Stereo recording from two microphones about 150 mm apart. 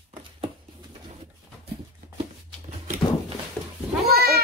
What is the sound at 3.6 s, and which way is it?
Goat, 10° left (ahead or behind).